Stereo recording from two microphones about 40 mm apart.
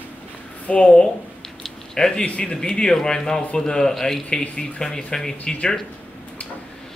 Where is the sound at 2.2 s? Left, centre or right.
Left.